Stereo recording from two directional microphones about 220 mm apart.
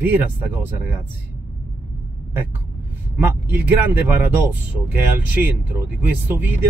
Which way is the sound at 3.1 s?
10° right (ahead or behind).